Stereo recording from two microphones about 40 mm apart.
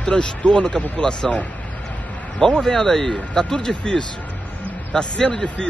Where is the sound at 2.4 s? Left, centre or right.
Centre.